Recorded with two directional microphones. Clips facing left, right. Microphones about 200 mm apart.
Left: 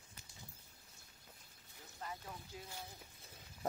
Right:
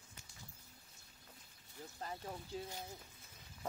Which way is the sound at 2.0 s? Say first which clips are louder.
Right 1 dB; 35° right (ahead or behind).